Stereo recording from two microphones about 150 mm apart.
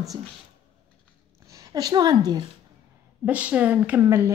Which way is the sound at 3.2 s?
10° right (ahead or behind).